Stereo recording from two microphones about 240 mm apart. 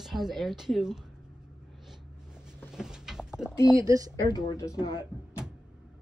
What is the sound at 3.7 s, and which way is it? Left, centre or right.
Speech, centre.